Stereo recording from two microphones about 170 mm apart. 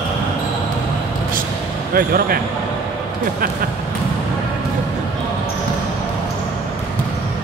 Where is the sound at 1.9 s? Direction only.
60° right (ahead or behind).